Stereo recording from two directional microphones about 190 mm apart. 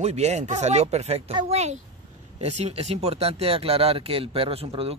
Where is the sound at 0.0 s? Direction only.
35° right (ahead or behind).